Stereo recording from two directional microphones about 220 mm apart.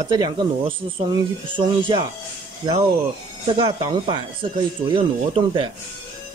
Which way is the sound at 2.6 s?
20° right (ahead or behind).